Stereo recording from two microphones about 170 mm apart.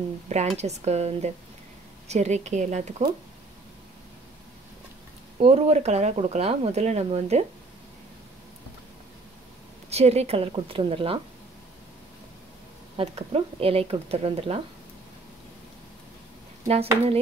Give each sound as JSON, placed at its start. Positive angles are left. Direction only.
{"t": 0.3, "sound": "a woman's voice", "side_deg": -40}
{"t": 5.4, "sound": "speech", "side_deg": -35}
{"t": 9.8, "sound": "speech", "side_deg": -40}
{"t": 12.9, "sound": "speech", "side_deg": -35}
{"t": 16.6, "sound": "speech", "side_deg": -40}